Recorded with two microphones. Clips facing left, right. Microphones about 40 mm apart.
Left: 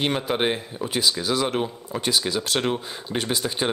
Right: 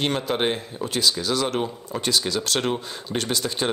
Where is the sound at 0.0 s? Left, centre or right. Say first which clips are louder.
Even; centre.